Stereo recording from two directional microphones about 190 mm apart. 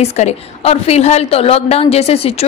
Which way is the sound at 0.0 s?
35° left (ahead or behind).